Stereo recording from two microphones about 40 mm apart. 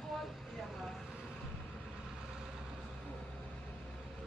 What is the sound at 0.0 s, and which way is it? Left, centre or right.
Vehicle, centre.